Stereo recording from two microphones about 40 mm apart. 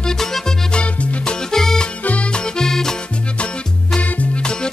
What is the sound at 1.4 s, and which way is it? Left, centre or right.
Music, centre.